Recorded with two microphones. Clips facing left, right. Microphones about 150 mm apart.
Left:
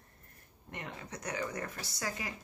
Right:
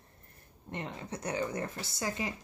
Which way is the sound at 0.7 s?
30° right (ahead or behind).